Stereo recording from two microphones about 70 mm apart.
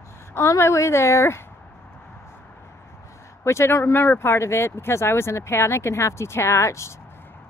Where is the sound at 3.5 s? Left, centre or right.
Left.